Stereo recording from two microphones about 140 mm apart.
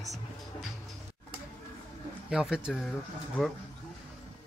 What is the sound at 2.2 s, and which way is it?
Speech, 5° right (ahead or behind).